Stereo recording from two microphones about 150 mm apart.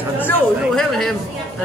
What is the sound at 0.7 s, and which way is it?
Speech, centre (ahead or behind).